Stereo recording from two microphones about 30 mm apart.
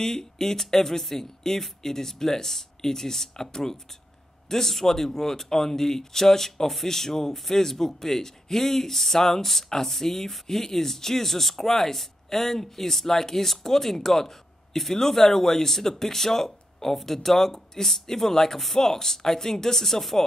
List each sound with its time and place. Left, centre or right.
0.0 s speech: centre